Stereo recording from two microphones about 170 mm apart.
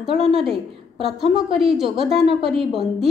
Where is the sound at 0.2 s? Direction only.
Centre (ahead or behind).